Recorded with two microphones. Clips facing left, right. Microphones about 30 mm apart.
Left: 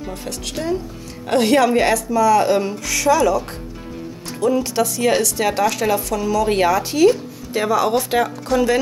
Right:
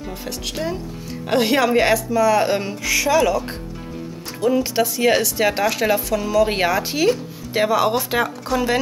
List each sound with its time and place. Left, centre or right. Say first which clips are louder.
0.6 s speech: left 5 dB; centre
4.4 s speech: even; centre
7.9 s speech: left 2 dB; centre